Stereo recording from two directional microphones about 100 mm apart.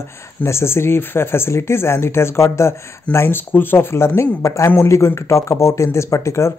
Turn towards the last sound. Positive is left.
turn(degrees=30)  # may be behind; listen again after turning